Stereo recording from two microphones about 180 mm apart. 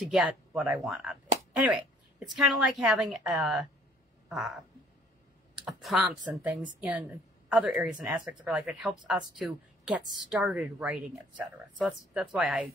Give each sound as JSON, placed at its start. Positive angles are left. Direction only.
{"t": 0.1, "sound": "speech", "side_deg": -5}
{"t": 5.6, "sound": "a woman's voice", "side_deg": -5}